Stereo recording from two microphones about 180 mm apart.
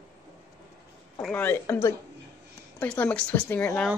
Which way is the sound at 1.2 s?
10° left (ahead or behind).